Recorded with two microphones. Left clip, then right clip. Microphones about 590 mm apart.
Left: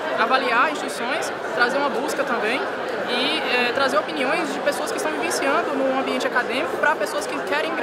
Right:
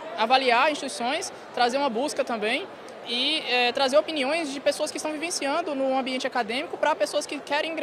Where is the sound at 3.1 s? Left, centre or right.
Right.